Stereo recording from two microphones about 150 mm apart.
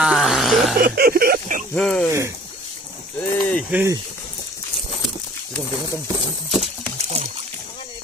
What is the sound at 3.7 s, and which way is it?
Speech, 20° right (ahead or behind).